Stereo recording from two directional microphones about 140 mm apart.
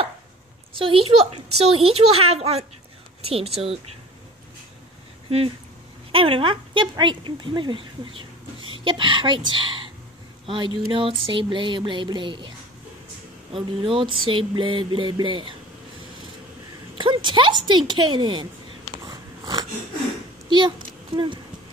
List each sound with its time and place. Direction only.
0.7 s a woman's voice: 40° right (ahead or behind)
6.1 s speech: 40° right (ahead or behind)
16.9 s a sound: 35° right (ahead or behind)
17.6 s speech: 30° right (ahead or behind)
19.0 s biting: 30° right (ahead or behind)
20.4 s a sound: 35° right (ahead or behind)